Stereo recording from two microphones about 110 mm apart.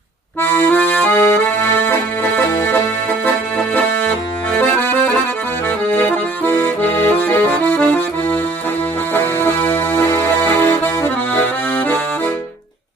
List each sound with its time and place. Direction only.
0.4 s accordion: 15° left (ahead or behind)
4.5 s accordion: 15° left (ahead or behind)